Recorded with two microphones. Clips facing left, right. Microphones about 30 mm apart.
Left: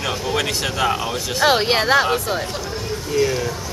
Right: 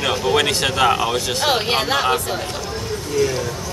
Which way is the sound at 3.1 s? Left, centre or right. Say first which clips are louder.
Even; centre.